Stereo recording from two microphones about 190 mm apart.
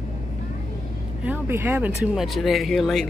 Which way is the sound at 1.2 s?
10° right (ahead or behind).